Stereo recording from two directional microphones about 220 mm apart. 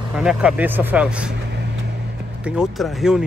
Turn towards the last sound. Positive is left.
turn(degrees=0)  # may be behind; listen again after turning